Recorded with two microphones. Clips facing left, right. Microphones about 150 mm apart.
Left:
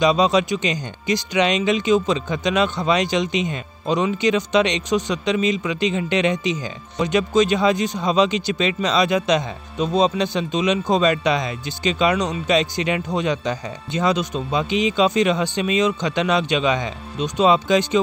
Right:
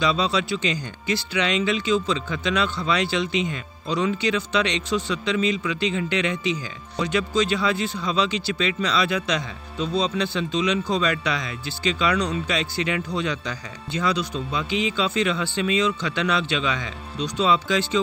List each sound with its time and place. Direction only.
0.0 s speech: 20° left (ahead or behind)